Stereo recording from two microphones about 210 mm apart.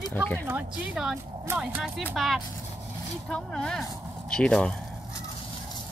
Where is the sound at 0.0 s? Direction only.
10° left (ahead or behind).